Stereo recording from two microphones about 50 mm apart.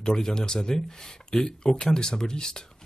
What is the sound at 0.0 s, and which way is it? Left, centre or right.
Speech, centre.